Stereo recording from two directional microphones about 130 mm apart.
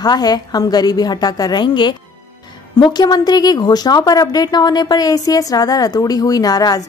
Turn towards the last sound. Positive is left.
turn(degrees=30)  # may be behind; listen again after turning